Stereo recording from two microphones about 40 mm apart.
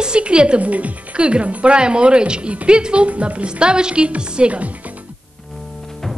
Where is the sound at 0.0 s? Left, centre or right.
Right.